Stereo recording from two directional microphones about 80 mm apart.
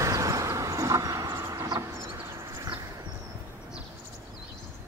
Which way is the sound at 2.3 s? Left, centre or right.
Right.